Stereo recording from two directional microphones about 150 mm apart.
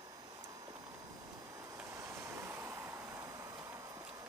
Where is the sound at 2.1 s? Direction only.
15° right (ahead or behind).